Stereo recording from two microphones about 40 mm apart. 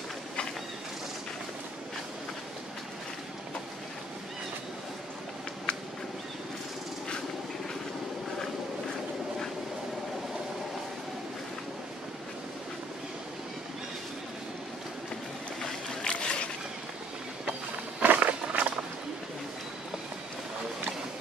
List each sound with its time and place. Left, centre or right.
5.7 s a sound: left
15.6 s boat: centre
18.0 s walk: right